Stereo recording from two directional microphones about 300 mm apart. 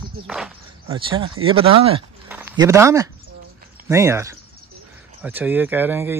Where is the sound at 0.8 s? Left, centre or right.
Centre.